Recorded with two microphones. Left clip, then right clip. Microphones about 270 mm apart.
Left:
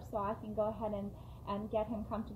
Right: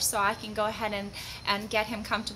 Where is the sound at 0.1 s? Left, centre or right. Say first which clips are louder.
Right 10 dB; right.